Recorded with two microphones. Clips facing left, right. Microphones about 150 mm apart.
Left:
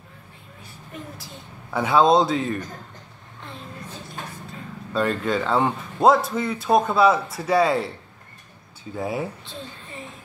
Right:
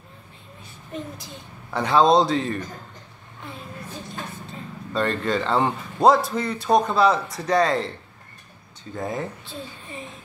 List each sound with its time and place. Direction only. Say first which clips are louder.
0.9 s speech: right 4 dB; 20° right (ahead or behind)
1.7 s a man's voice: even; 5° left (ahead or behind)
4.9 s a man's voice: left 1 dB; 5° left (ahead or behind)
8.9 s speech: left 1 dB; 10° left (ahead or behind)